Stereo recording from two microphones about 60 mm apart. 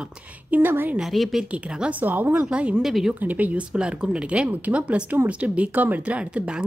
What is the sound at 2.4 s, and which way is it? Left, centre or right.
Speech, centre.